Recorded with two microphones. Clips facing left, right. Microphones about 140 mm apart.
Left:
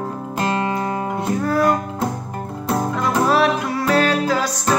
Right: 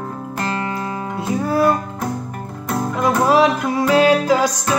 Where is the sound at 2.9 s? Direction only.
15° right (ahead or behind).